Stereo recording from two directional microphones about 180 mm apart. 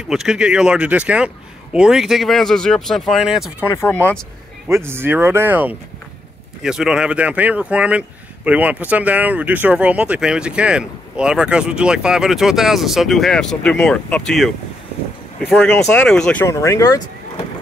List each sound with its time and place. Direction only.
0.1 s speech: 5° right (ahead or behind)
3.6 s speech: 15° left (ahead or behind)
4.6 s speech: 15° right (ahead or behind); by 16.4 s 5° left (ahead or behind)
16.4 s speech: 15° left (ahead or behind)